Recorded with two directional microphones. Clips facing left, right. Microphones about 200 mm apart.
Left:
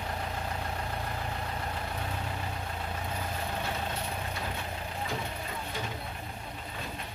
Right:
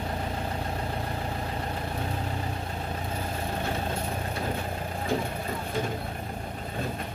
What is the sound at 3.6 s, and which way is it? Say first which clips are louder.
Vehicle: right 4 dB; 50° right (ahead or behind).